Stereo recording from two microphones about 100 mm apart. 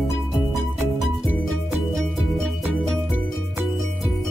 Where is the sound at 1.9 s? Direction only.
5° left (ahead or behind).